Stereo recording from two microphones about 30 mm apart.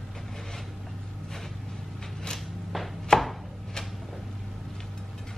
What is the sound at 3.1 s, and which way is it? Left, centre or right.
Chopping, left.